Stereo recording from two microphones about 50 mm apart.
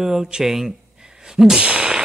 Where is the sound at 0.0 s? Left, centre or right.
Centre.